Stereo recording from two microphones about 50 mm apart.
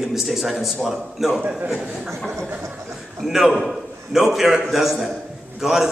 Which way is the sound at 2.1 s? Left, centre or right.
Centre.